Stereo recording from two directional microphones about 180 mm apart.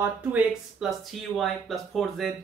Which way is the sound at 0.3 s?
5° right (ahead or behind).